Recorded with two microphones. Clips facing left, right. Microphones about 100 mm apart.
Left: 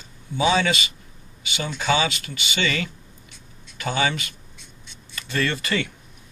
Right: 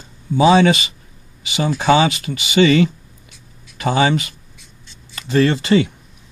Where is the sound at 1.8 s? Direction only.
40° right (ahead or behind).